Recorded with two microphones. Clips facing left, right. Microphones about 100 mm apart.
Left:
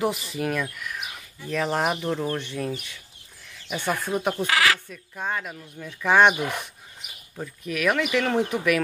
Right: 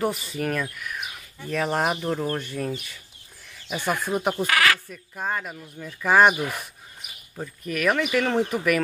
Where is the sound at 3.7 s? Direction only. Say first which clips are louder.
Right 1 dB; 15° right (ahead or behind).